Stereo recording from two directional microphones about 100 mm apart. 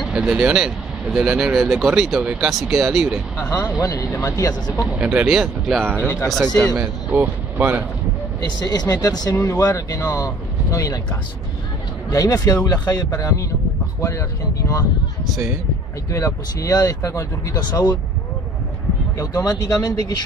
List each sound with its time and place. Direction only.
0.0 s speech: 10° right (ahead or behind)
3.3 s speech: 35° left (ahead or behind)
4.9 s speech: 15° right (ahead or behind)
5.9 s speech: 20° right (ahead or behind)
6.2 s speech: centre (ahead or behind)
6.8 s speech: 20° right (ahead or behind)
8.5 s speech: 40° left (ahead or behind)
12.1 s speech: 35° left (ahead or behind)
16.1 s speech: 30° left (ahead or behind)
17.6 s speech: 45° left (ahead or behind)
19.1 s speech: 35° left (ahead or behind)